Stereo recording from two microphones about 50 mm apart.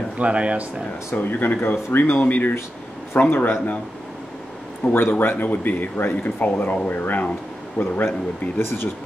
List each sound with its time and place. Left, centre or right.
0.2 s speech: right
1.1 s speech: left
4.8 s a man's voice: centre
5.2 s a man's voice: left
8.5 s speech: left